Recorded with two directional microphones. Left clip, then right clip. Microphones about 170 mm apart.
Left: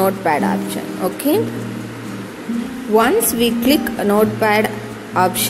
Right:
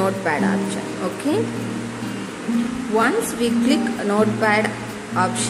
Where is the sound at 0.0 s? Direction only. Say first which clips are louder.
Left 5 dB; 30° left (ahead or behind).